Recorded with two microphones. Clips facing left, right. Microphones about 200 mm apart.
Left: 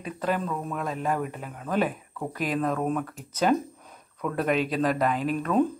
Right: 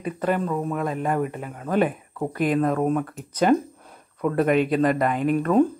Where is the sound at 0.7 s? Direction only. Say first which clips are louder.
Right 2 dB; 5° right (ahead or behind).